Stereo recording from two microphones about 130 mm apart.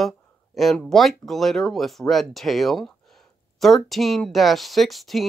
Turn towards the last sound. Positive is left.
turn(degrees=0)  # may be behind; listen again after turning